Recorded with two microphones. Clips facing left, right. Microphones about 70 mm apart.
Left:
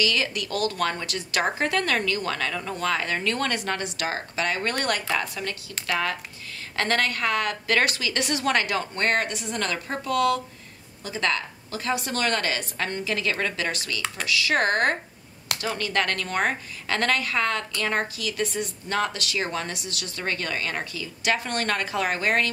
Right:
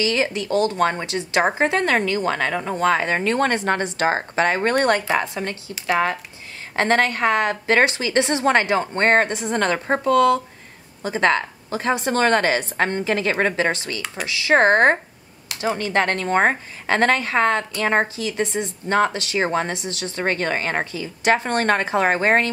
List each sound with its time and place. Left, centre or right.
0.0 s a woman's voice: right